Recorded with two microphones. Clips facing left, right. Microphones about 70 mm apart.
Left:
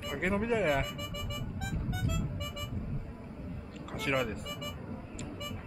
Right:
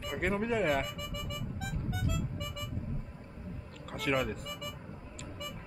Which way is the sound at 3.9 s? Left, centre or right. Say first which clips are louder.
Even; centre.